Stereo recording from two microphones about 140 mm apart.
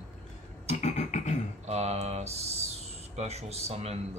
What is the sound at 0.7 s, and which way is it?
Music, 55° left (ahead or behind).